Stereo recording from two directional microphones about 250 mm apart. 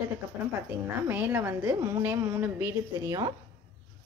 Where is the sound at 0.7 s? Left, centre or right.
Centre.